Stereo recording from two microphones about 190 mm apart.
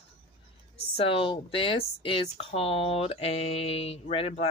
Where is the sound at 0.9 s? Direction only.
30° left (ahead or behind).